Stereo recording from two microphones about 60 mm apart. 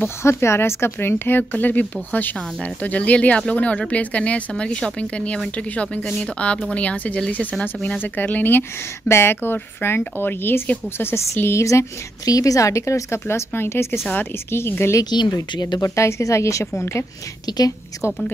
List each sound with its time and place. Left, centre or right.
0.2 s a woman's voice: left
9.1 s a woman's voice: left
12.3 s a woman's voice: left
15.0 s a woman's voice: left
16.7 s a woman's voice: left
17.5 s a woman's voice: left